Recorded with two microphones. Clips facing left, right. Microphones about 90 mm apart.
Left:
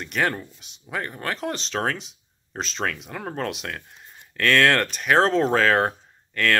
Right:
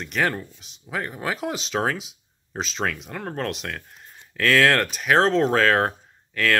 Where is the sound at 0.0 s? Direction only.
Centre (ahead or behind).